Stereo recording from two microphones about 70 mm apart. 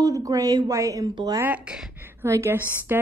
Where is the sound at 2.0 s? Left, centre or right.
Right.